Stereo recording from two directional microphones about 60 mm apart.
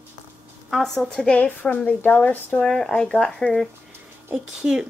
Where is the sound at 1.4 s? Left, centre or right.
Left; by 3.7 s centre.